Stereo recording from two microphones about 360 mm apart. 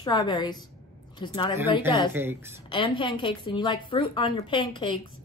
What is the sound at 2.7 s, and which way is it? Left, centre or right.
A woman's voice, centre.